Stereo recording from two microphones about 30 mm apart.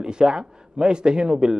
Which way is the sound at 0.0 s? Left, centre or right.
Right.